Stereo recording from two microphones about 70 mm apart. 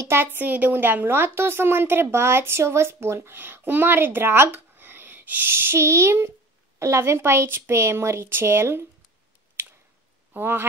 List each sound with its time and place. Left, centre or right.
0.0 s speech: right
10.3 s speech: right